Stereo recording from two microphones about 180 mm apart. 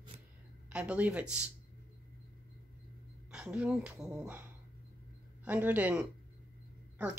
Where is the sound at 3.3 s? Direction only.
5° right (ahead or behind).